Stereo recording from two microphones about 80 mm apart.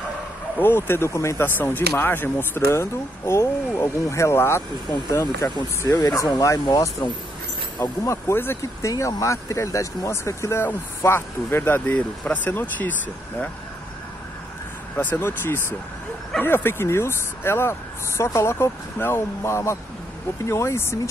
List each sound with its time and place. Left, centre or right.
0.6 s speech: left
1.4 s speech: left
8.8 s speech: left
15.0 s speech: left